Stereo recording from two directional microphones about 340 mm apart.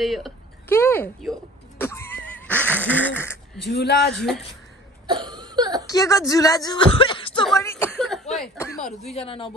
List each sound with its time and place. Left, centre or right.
0.0 s speech: centre
1.8 s neigh: centre
3.6 s speech: left
4.1 s speech: centre
5.0 s a sound: centre
5.9 s speech: centre
9.1 s speech: centre